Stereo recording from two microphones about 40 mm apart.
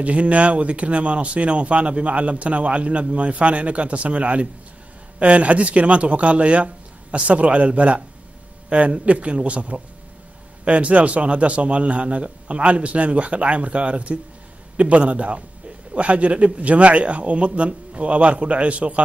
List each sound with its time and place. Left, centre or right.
0.0 s speech: right